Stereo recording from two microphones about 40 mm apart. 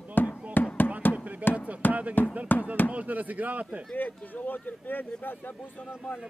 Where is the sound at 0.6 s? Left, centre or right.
Left.